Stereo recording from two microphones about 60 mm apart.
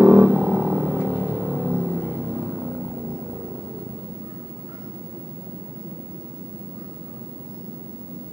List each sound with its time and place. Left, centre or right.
0.0 s music: right
2.0 s music: right
2.5 s vehicle: centre